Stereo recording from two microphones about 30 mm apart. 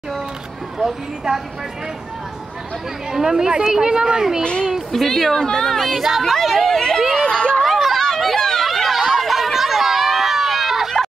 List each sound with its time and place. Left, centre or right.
0.7 s speech: centre
3.1 s a child's voice: centre
4.9 s speech: centre
5.7 s speech: centre
5.9 s speech: centre
6.2 s speech: centre
7.2 s a sound: left
7.6 s chatter: centre
8.0 s a sound: centre
8.6 s a sound: centre